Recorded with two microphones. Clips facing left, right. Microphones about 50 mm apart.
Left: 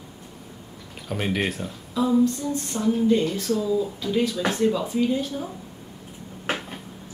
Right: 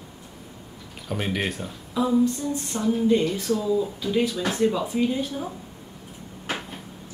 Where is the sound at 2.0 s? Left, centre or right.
Centre.